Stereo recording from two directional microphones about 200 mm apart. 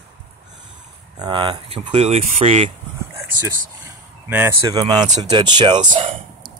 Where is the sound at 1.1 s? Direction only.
20° right (ahead or behind).